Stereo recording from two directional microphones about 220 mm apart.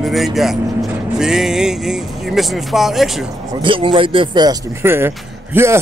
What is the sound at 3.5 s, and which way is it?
Speech, 20° right (ahead or behind).